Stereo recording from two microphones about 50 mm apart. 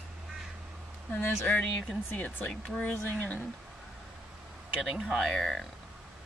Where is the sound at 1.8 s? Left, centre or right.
Left.